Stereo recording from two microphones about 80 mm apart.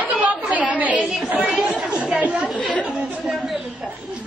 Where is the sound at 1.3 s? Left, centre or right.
Centre.